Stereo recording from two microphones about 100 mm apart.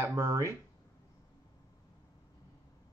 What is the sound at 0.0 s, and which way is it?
Speech, 35° right (ahead or behind).